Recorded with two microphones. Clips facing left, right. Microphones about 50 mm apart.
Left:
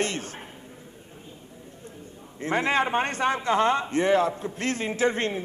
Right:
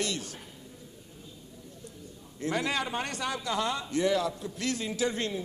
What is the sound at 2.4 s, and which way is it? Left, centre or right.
A man's voice, left.